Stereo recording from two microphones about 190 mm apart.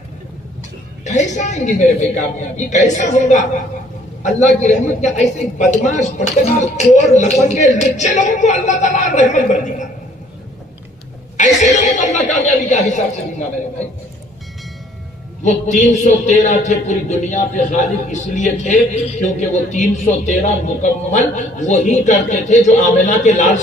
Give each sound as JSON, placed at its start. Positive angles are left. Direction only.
{"t": 1.0, "sound": "a man's voice", "side_deg": 40}
{"t": 11.3, "sound": "a man's voice", "side_deg": 40}
{"t": 15.4, "sound": "a man's voice", "side_deg": 40}